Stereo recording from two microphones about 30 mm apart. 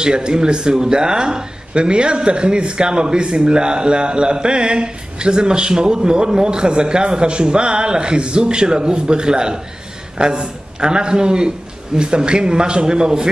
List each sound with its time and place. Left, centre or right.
0.0 s speech: right